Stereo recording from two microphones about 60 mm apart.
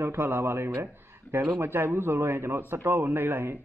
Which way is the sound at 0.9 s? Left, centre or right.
Right.